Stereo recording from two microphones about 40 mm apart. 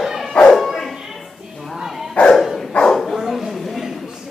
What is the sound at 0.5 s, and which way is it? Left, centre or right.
Bow-wow, centre.